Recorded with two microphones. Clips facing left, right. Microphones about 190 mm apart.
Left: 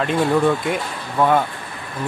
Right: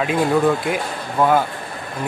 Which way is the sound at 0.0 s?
5° right (ahead or behind).